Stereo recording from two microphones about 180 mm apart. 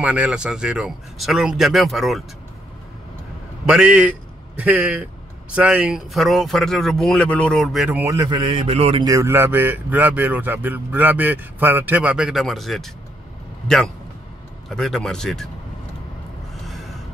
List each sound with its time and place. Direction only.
0.0 s speech: 5° right (ahead or behind)
3.6 s speech: 5° right (ahead or behind)
8.0 s speech: 15° right (ahead or behind)
8.4 s a man's voice: 30° right (ahead or behind)
9.0 s speech: 15° right (ahead or behind); by 12.9 s centre (ahead or behind)
14.7 s speech: centre (ahead or behind)
16.6 s gasp: centre (ahead or behind)